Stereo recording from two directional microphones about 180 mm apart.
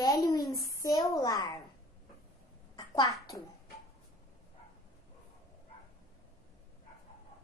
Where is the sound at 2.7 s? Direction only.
20° left (ahead or behind).